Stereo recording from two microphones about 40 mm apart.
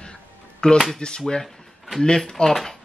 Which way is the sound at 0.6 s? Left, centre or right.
Left.